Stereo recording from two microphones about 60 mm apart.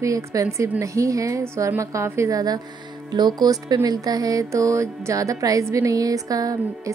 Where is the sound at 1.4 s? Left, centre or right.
Right.